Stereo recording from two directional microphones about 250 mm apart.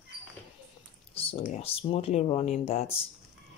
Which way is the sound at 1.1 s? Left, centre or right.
Left.